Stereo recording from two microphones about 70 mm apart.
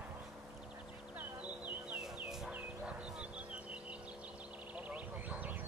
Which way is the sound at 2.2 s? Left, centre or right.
Centre.